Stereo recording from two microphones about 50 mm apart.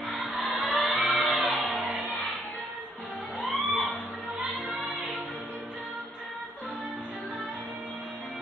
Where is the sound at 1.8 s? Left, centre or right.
Right.